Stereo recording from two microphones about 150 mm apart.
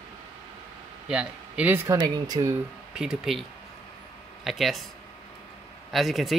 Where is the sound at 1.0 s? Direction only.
5° right (ahead or behind).